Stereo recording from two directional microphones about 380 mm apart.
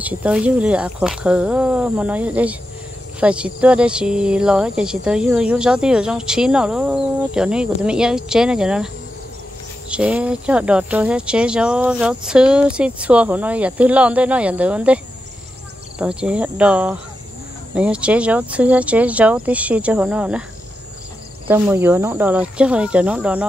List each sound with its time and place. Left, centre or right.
0.0 s speech: centre
16.0 s speech: centre
21.5 s speech: centre